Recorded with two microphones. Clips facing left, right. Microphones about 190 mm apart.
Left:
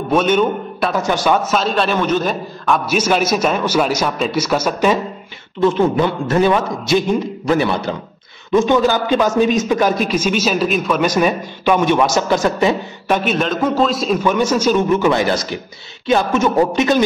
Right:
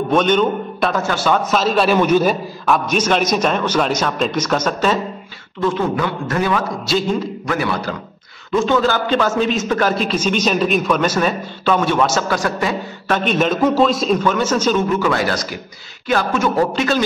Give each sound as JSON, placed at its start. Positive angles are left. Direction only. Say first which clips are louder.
{"t": 0.1, "sound": "a man's voice", "louder": "left 1 dB", "side_deg": 5}
{"t": 1.5, "sound": "a man's voice", "louder": "right 2 dB", "side_deg": 0}
{"t": 2.9, "sound": "a man's voice", "louder": "left 3 dB", "side_deg": 5}
{"t": 5.6, "sound": "a man's voice", "louder": "left 4 dB", "side_deg": 25}
{"t": 11.1, "sound": "a man's voice", "louder": "left 2 dB", "side_deg": 15}
{"t": 13.2, "sound": "a man's voice", "louder": "right 6 dB", "side_deg": 5}
{"t": 14.2, "sound": "a man's voice", "louder": "left 2 dB", "side_deg": 15}